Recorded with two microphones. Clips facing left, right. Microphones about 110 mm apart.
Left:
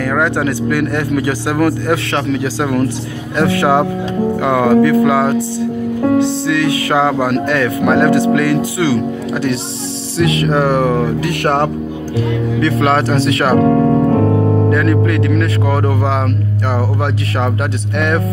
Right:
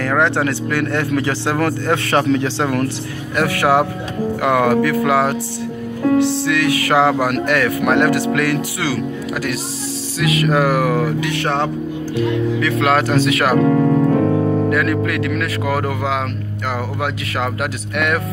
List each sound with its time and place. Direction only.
0.2 s speech: 15° left (ahead or behind)
11.1 s music: 50° left (ahead or behind)
12.5 s speech: 30° left (ahead or behind)
13.6 s piano: 20° left (ahead or behind)
14.4 s music: 15° left (ahead or behind)
14.7 s speech: 30° left (ahead or behind)
17.9 s speech: 30° left (ahead or behind)